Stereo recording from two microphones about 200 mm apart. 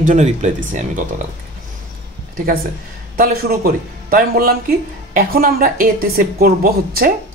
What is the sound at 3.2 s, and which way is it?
Speech, 45° right (ahead or behind).